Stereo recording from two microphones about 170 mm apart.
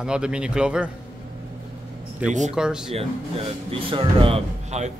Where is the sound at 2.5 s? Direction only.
5° right (ahead or behind).